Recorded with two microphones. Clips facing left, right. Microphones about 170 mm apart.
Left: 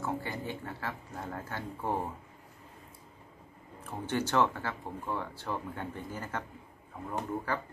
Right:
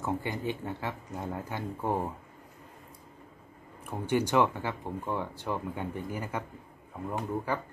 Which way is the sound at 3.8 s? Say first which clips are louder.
Right 4 dB; 15° right (ahead or behind).